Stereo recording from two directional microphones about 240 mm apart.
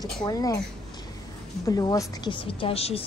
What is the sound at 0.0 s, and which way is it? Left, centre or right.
Speech, centre.